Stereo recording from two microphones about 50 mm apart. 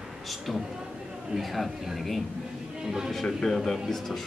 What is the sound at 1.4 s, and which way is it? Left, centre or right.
Speech, centre.